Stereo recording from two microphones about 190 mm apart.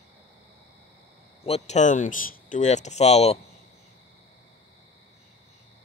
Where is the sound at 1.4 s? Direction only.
35° left (ahead or behind).